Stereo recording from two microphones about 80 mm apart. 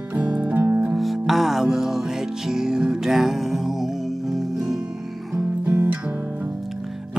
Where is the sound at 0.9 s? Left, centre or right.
Centre.